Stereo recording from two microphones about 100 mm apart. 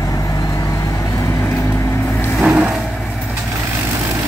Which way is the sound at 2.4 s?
10° right (ahead or behind).